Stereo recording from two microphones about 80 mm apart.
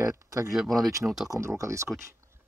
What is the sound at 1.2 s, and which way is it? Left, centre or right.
Speech, right.